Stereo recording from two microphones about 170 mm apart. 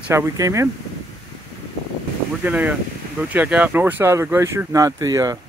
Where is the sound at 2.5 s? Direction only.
10° right (ahead or behind).